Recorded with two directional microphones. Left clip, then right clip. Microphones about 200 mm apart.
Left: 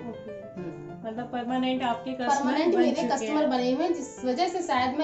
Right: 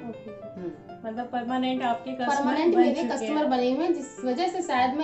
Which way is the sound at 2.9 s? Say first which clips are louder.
Left 1 dB; 5° left (ahead or behind).